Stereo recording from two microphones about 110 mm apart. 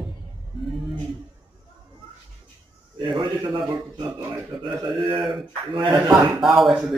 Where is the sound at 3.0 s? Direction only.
50° right (ahead or behind).